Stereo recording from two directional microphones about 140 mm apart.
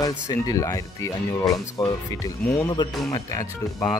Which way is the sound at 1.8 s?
25° left (ahead or behind).